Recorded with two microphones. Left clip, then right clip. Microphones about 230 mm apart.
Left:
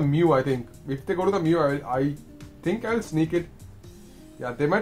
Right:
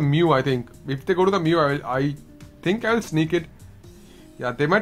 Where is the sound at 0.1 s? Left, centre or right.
Right.